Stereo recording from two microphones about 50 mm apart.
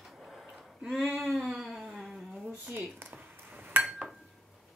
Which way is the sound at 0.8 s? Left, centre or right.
Centre.